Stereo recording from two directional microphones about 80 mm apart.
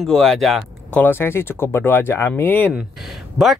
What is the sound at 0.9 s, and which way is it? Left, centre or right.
Speech, left.